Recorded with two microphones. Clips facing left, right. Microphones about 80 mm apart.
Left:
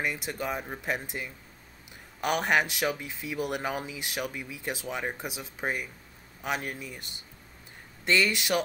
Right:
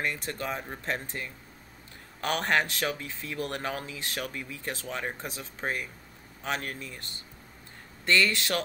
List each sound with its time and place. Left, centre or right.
0.0 s speech: centre